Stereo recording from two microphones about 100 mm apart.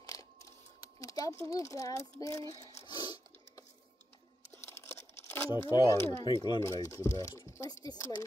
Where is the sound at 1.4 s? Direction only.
30° left (ahead or behind).